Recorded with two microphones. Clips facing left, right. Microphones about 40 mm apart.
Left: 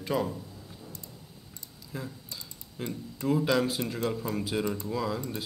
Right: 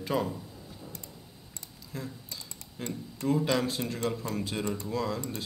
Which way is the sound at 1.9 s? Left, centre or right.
Centre.